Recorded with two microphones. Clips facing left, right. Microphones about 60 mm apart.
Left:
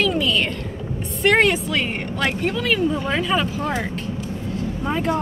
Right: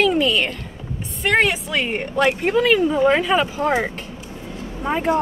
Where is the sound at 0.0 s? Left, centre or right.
Centre.